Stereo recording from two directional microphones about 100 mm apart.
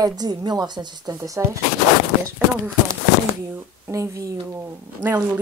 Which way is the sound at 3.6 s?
25° right (ahead or behind).